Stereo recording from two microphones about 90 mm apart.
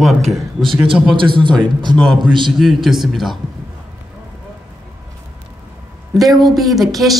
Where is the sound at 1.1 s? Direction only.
65° right (ahead or behind).